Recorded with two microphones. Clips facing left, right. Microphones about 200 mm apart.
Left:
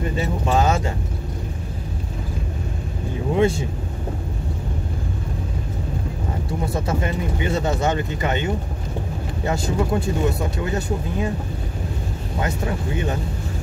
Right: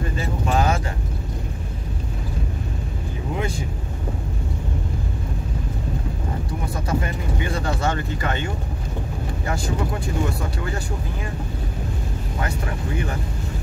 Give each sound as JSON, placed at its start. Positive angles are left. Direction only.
{"t": 0.2, "sound": "vehicle", "side_deg": 25}
{"t": 3.3, "sound": "vehicle", "side_deg": 25}
{"t": 6.7, "sound": "a sound", "side_deg": 25}
{"t": 9.5, "sound": "speech", "side_deg": 25}
{"t": 12.4, "sound": "speech", "side_deg": 25}